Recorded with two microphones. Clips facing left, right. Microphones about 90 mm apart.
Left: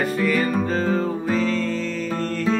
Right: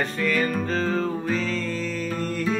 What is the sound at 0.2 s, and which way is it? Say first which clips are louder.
Music: left 2 dB; 5° left (ahead or behind).